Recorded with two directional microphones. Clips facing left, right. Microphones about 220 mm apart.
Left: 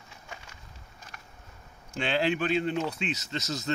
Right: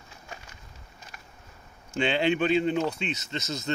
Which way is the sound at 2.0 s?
Centre (ahead or behind).